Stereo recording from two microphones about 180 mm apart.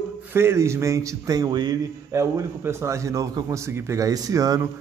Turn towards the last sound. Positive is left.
turn(degrees=-20)  # may be behind; listen again after turning